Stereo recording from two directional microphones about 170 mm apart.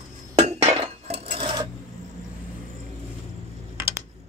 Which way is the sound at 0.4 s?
40° right (ahead or behind).